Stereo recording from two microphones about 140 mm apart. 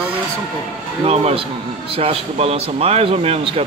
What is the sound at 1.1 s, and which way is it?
Speech, 45° right (ahead or behind).